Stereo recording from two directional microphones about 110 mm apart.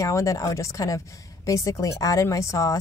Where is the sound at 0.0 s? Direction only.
30° left (ahead or behind).